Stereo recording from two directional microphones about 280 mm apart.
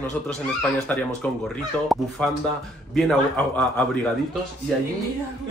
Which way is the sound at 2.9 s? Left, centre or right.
Centre.